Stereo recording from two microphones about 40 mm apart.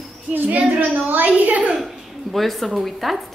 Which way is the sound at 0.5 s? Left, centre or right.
Right.